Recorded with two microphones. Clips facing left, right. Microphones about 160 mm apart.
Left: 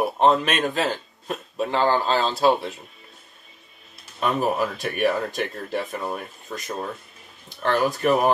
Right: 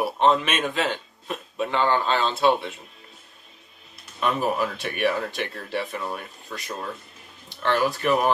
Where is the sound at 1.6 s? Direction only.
35° left (ahead or behind).